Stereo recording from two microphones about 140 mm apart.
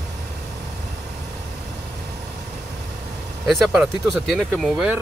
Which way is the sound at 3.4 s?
Centre (ahead or behind).